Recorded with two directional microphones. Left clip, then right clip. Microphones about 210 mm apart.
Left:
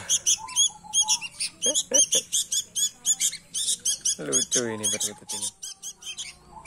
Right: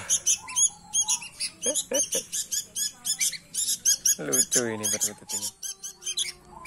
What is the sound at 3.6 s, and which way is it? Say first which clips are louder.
Rodents: right 2 dB; 15° left (ahead or behind).